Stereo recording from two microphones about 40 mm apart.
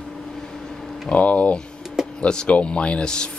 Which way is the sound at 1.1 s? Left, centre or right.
Left.